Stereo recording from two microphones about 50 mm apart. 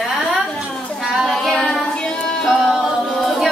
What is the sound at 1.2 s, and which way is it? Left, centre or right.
Child singing, centre.